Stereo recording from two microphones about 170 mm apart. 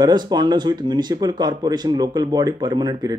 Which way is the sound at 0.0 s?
25° right (ahead or behind).